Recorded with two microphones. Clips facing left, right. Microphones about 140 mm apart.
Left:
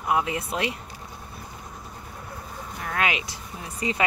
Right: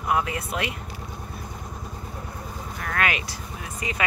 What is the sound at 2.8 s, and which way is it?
Speech, 20° left (ahead or behind).